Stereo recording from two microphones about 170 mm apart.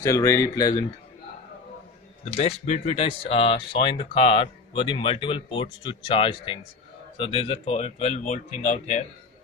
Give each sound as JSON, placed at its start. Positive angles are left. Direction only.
{"t": 0.0, "sound": "speech", "side_deg": 20}
{"t": 2.2, "sound": "speech", "side_deg": 45}